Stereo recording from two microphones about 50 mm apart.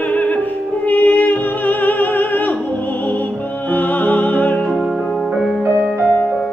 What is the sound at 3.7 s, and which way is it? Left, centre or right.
Music, left.